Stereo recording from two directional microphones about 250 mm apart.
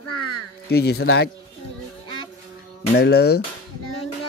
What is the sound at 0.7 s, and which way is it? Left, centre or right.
Speech, left.